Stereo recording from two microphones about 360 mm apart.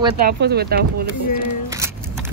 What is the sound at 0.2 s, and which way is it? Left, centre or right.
Speech, right.